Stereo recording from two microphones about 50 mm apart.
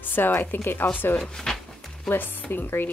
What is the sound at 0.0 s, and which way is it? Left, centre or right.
Speech, left.